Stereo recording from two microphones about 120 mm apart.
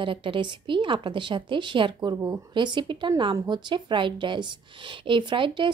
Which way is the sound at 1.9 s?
30° right (ahead or behind).